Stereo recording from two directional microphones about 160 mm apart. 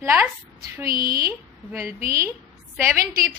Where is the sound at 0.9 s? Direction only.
65° right (ahead or behind).